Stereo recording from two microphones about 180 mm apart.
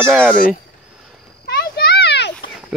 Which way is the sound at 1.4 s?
65° left (ahead or behind).